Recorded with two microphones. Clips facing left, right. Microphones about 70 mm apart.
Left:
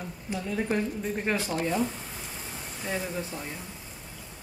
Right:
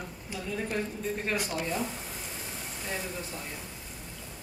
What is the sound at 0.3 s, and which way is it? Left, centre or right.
Speech, left.